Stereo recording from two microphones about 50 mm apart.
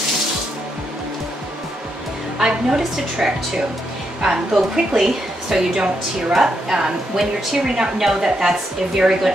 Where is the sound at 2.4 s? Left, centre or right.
Centre.